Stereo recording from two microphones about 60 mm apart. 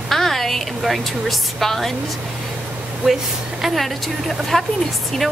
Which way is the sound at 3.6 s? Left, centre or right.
Centre.